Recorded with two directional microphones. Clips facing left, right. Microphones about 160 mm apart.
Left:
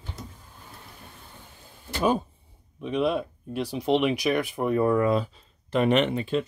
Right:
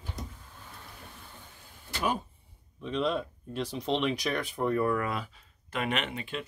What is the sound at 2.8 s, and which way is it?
Speech, 10° left (ahead or behind).